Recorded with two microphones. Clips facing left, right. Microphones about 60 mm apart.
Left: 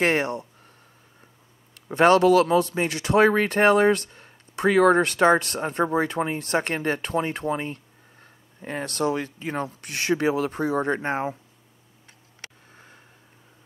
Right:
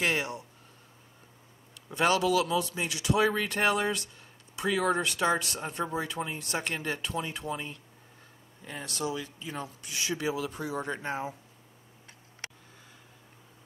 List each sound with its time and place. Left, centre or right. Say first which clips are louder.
0.0 s speech: left 7 dB; left
1.9 s speech: left 9 dB; left